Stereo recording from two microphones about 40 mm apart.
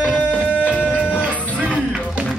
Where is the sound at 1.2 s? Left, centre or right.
Right.